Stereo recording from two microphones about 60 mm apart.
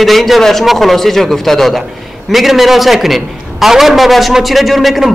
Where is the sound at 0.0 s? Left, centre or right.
Centre.